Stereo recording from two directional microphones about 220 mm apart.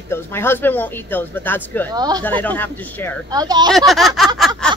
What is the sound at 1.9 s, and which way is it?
Speech, 20° right (ahead or behind).